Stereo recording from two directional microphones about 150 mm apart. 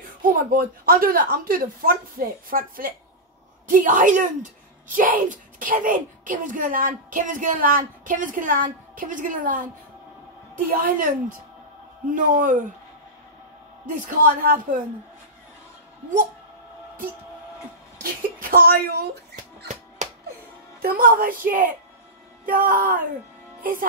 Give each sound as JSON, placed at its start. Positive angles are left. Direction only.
{"t": 0.2, "sound": "a woman's voice", "side_deg": -70}
{"t": 3.6, "sound": "a woman's voice", "side_deg": -60}
{"t": 10.7, "sound": "a woman's voice", "side_deg": -70}
{"t": 12.1, "sound": "a woman's voice", "side_deg": -60}
{"t": 13.8, "sound": "a woman's voice", "side_deg": -60}
{"t": 18.4, "sound": "speech", "side_deg": -85}
{"t": 20.0, "sound": "music", "side_deg": -55}
{"t": 20.8, "sound": "a woman's voice", "side_deg": -70}